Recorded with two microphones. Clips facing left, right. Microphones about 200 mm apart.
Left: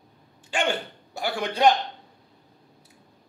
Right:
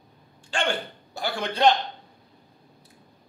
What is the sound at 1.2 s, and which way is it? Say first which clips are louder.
Speech: left 1 dB; 15° left (ahead or behind).